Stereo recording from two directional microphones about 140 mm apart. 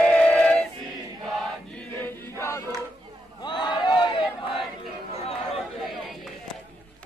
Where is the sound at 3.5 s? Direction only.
35° left (ahead or behind).